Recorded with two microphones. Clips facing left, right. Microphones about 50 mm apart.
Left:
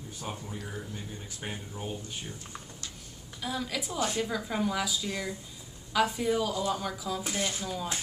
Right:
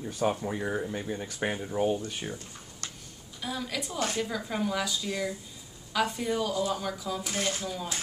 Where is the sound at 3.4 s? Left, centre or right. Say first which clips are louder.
Even; centre.